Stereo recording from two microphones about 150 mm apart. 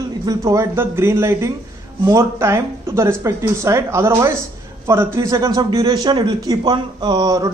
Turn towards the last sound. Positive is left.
turn(degrees=-25)  # may be behind; listen again after turning